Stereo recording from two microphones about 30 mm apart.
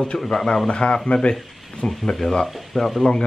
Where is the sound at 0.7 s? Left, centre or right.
Left.